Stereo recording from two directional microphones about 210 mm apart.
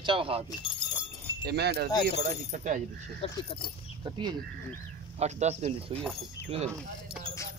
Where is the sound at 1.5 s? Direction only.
50° right (ahead or behind).